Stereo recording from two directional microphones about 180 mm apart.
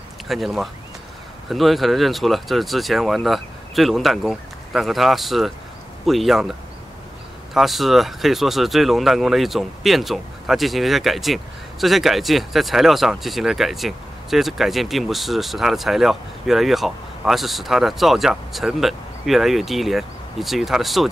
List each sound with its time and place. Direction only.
0.3 s speech: centre (ahead or behind)
7.5 s speech: centre (ahead or behind)